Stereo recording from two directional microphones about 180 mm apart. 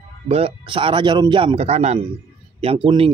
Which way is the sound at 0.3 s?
30° right (ahead or behind).